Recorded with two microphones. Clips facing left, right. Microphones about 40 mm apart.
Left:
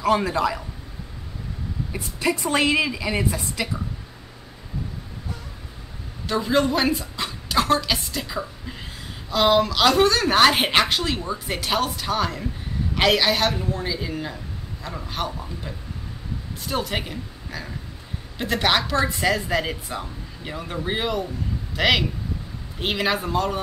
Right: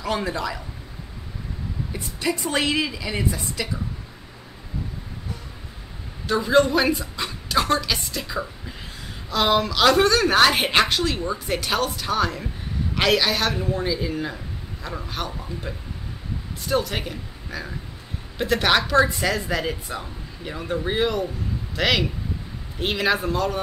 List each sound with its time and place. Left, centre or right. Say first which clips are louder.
1.9 s a woman's voice: left 2 dB; left
6.2 s a woman's voice: right 3 dB; centre
16.6 s a man's voice: right 2 dB; centre